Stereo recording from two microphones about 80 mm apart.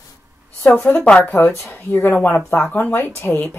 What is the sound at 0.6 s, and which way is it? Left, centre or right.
Speech, centre.